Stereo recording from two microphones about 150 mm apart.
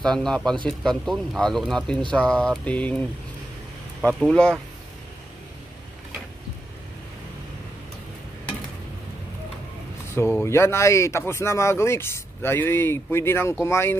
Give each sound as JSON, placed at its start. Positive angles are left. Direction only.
{"t": 0.0, "sound": "speech", "side_deg": 5}
{"t": 4.1, "sound": "speech", "side_deg": 5}
{"t": 10.1, "sound": "speech", "side_deg": 15}